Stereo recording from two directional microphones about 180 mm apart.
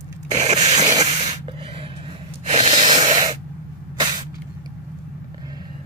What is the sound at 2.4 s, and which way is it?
Spray, 30° right (ahead or behind).